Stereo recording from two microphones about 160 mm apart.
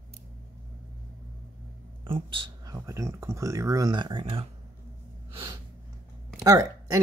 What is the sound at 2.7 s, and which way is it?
Speech, 20° right (ahead or behind).